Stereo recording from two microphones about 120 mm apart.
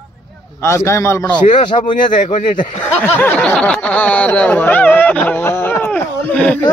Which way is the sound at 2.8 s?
15° left (ahead or behind).